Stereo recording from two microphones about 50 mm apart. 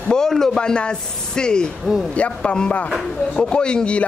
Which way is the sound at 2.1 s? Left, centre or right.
Left.